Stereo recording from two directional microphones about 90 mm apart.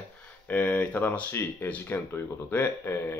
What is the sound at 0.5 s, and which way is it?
Speech, 20° left (ahead or behind).